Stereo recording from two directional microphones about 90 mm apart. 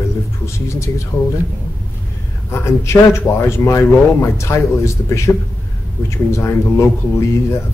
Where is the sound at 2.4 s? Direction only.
30° left (ahead or behind).